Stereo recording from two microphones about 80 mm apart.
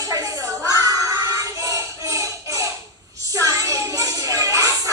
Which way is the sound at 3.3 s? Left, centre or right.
Right.